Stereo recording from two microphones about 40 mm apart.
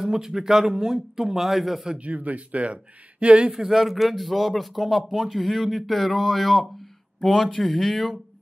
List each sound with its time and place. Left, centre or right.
0.0 s speech: centre
2.0 s speech: right
3.5 s speech: centre